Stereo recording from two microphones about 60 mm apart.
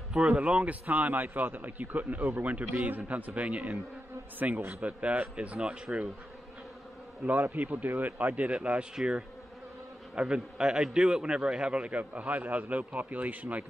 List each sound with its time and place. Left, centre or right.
0.1 s a man's voice: centre
7.2 s a man's voice: right